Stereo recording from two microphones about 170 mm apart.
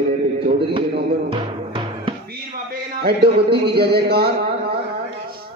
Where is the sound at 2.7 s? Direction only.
65° right (ahead or behind).